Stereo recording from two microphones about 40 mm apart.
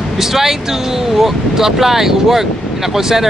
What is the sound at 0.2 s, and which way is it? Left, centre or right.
Speech, centre.